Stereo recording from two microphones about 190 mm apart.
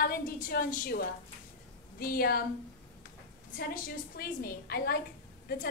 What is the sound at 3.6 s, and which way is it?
A woman's voice, 50° left (ahead or behind).